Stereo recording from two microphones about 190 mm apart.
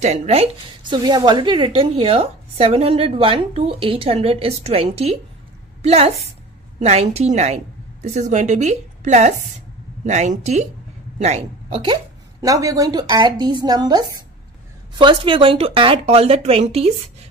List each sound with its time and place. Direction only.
0.0 s a woman's voice: 35° right (ahead or behind)